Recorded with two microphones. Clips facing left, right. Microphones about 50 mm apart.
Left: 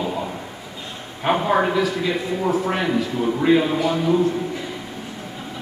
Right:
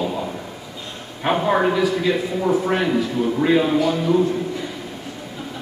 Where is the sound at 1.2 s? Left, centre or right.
Centre.